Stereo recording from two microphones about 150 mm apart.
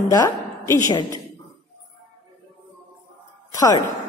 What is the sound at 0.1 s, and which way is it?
A woman's voice, 25° left (ahead or behind).